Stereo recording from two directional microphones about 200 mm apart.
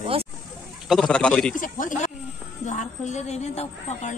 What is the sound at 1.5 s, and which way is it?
A woman's voice, 40° left (ahead or behind).